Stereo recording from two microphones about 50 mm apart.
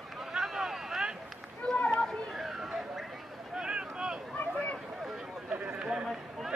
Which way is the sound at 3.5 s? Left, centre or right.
Centre.